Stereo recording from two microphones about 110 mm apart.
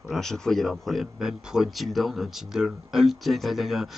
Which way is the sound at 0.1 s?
5° left (ahead or behind).